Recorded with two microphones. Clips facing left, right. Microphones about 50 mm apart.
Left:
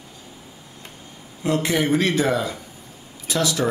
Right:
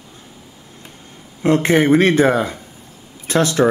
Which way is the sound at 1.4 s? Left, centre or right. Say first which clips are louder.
Right 7 dB; right.